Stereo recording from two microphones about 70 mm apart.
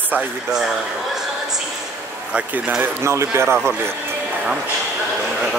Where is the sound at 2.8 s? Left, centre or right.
Right.